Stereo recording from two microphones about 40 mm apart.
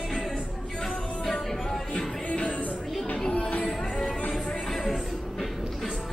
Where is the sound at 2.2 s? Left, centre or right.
Left.